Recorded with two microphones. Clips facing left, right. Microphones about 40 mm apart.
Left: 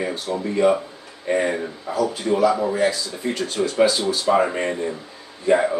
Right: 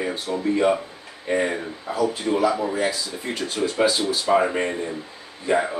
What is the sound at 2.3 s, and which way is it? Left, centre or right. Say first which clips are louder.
Speech: left 5 dB; centre.